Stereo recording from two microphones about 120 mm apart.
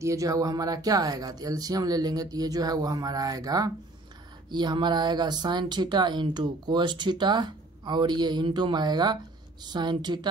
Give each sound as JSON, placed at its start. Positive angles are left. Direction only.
{"t": 0.0, "sound": "speech", "side_deg": -25}